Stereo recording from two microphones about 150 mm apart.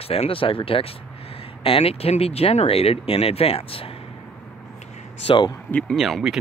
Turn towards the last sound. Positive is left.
turn(degrees=0)  # may be behind; listen again after turning